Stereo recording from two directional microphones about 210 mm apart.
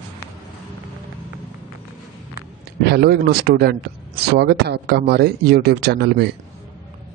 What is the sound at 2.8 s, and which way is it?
Speech, 50° right (ahead or behind).